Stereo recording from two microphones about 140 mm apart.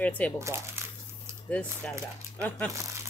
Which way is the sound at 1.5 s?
10° left (ahead or behind).